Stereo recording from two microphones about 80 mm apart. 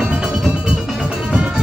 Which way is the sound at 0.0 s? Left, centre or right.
Centre.